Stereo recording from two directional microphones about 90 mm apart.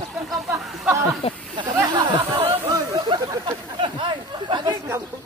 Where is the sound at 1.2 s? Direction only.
90° left.